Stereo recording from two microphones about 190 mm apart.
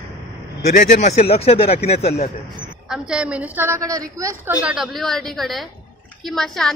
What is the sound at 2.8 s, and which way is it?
A woman's voice, 5° right (ahead or behind).